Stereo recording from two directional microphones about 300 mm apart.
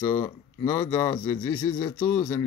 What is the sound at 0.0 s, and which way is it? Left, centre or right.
Speech, centre.